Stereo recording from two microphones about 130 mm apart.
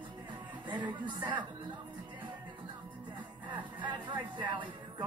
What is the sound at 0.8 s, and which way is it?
Speech, 35° right (ahead or behind).